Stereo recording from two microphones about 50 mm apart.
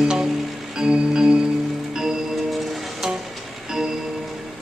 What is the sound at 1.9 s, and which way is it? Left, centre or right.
Tick-tock, centre.